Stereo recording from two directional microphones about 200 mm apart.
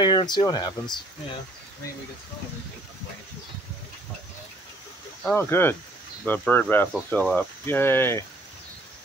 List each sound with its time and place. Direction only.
0.0 s speech: 25° left (ahead or behind)
5.3 s speech: 10° left (ahead or behind)